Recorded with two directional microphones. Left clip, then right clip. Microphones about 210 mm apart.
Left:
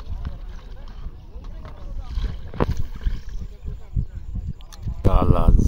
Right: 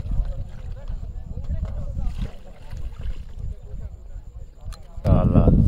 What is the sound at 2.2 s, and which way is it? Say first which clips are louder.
Boat: left 15 dB; 35° right (ahead or behind).